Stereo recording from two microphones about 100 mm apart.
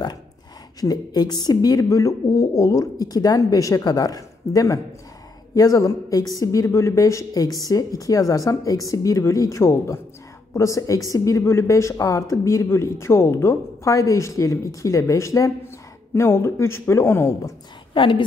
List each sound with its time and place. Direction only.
0.7 s speech: 40° left (ahead or behind)
17.9 s a woman's voice: 60° left (ahead or behind)